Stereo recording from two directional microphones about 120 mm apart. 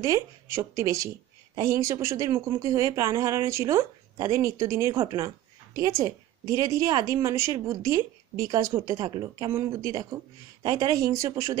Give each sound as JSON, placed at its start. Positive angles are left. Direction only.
{"t": 0.0, "sound": "a woman's voice", "side_deg": -25}
{"t": 9.5, "sound": "a woman's voice", "side_deg": -25}